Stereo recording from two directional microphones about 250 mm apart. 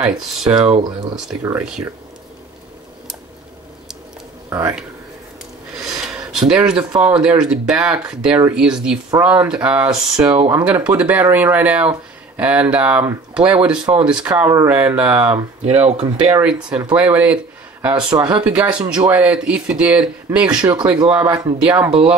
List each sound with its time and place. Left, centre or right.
0.0 s speech: centre
0.7 s speech: centre
1.4 s speech: centre
4.5 s speech: centre
5.8 s a sound: centre
7.0 s speech: centre